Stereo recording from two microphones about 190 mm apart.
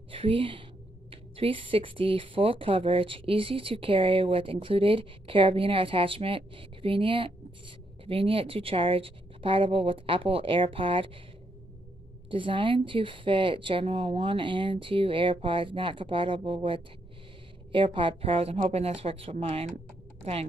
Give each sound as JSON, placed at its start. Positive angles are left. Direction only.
{"t": 0.1, "sound": "a woman's voice", "side_deg": -30}
{"t": 12.3, "sound": "speech", "side_deg": -25}
{"t": 17.9, "sound": "speech", "side_deg": -30}